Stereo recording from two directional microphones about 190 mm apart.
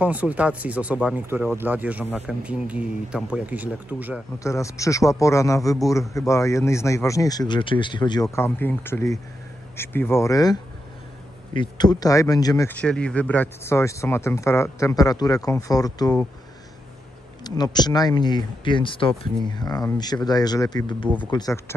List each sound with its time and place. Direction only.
0.0 s speech: 10° right (ahead or behind)
4.4 s speech: 15° left (ahead or behind)
8.4 s speech: 10° left (ahead or behind)
17.4 s speech: 20° left (ahead or behind)